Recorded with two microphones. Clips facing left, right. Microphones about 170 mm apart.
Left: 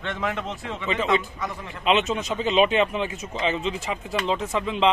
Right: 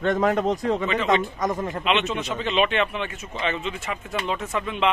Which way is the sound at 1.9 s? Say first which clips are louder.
Left 3 dB; 40° left (ahead or behind).